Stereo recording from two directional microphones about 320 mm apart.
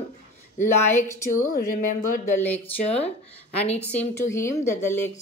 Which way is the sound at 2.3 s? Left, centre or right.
Centre.